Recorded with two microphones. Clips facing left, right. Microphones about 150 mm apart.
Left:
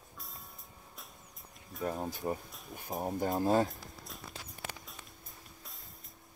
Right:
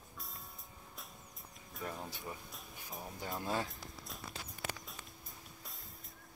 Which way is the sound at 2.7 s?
50° left (ahead or behind).